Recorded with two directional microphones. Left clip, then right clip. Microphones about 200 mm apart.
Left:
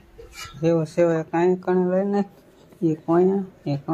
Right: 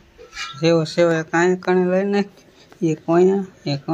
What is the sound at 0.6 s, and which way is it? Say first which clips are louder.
Speech: right 3 dB; 5° right (ahead or behind).